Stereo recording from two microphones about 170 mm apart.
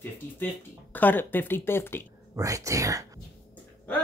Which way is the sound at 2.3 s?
20° right (ahead or behind).